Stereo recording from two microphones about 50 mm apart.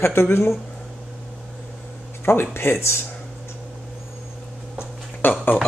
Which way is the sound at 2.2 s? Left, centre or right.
Left.